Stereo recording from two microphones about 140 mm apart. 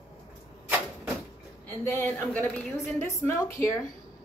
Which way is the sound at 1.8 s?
15° left (ahead or behind).